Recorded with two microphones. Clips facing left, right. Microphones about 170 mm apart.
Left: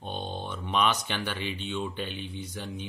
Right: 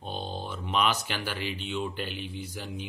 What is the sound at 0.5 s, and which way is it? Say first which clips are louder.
Speech: left 1 dB; 5° right (ahead or behind).